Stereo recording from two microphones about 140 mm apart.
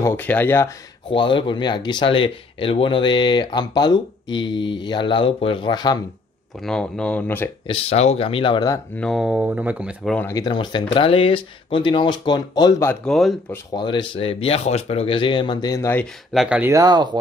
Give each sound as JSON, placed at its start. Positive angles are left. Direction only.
{"t": 0.0, "sound": "speech", "side_deg": 15}
{"t": 1.1, "sound": "speech", "side_deg": 35}
{"t": 6.6, "sound": "speech", "side_deg": 5}
{"t": 7.6, "sound": "speech", "side_deg": 45}
{"t": 8.9, "sound": "speech", "side_deg": 0}
{"t": 10.2, "sound": "speech", "side_deg": 25}
{"t": 13.0, "sound": "speech", "side_deg": 0}
{"t": 13.7, "sound": "speech", "side_deg": 35}
{"t": 16.3, "sound": "speech", "side_deg": -10}
{"t": 16.7, "sound": "speech", "side_deg": -30}